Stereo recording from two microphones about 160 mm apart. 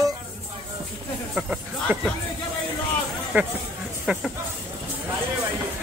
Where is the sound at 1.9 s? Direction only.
15° right (ahead or behind).